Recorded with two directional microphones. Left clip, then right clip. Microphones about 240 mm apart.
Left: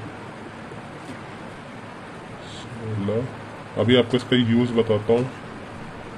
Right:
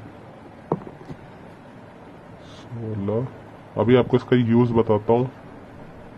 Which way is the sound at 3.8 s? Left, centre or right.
Right.